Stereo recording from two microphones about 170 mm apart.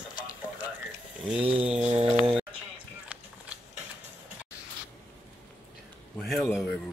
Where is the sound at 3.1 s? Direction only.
10° right (ahead or behind).